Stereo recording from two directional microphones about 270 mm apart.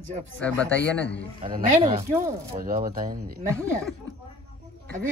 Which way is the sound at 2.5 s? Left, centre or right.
Right.